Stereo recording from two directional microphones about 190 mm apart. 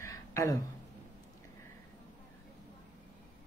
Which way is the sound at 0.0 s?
15° left (ahead or behind).